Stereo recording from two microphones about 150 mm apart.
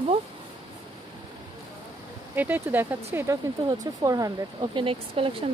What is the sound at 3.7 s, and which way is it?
Speech, 25° right (ahead or behind).